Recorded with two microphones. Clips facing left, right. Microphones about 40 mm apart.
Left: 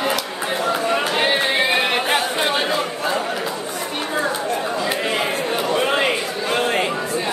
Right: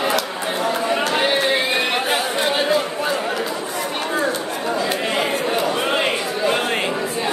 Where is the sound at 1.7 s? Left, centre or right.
Centre.